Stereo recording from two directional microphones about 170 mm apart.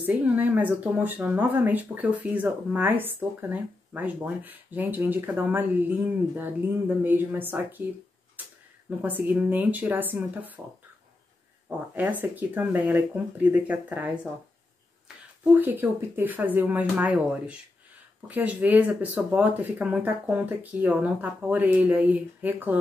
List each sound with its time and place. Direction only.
0.0 s speech: 10° right (ahead or behind)
9.0 s speech: 10° right (ahead or behind)
11.9 s speech: 10° right (ahead or behind)
15.5 s speech: 10° right (ahead or behind)